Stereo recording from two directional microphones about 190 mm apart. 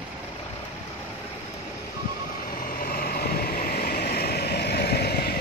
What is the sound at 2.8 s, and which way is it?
Vehicle, 50° left (ahead or behind).